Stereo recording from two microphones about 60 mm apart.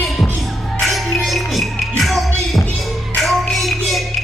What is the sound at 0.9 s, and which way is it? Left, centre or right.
Music, centre.